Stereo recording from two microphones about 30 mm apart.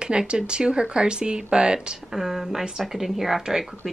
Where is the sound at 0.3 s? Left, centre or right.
Right.